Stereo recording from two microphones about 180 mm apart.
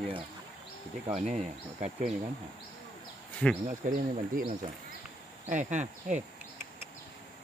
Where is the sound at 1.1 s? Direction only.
40° right (ahead or behind).